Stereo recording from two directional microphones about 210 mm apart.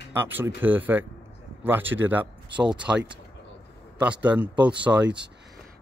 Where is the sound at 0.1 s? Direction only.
10° right (ahead or behind).